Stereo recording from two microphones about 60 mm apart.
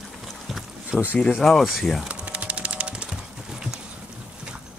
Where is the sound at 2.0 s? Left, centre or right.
Right.